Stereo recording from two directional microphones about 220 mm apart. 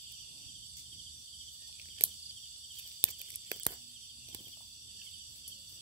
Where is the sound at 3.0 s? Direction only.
15° right (ahead or behind).